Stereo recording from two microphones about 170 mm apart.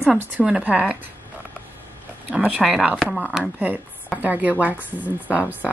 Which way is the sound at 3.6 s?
10° right (ahead or behind).